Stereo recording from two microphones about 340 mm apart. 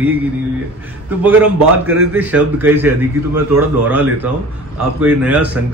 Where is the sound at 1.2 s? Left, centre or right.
Centre.